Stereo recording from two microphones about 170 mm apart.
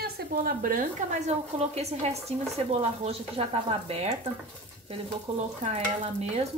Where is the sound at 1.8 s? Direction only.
40° right (ahead or behind).